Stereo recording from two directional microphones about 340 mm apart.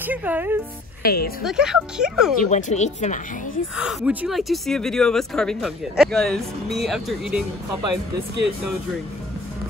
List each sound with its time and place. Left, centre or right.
0.0 s speech: centre
1.0 s a woman's voice: left
1.4 s speech: centre
2.5 s speech: centre
3.7 s speech: centre